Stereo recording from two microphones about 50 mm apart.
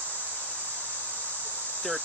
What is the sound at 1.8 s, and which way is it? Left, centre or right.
Speech, left.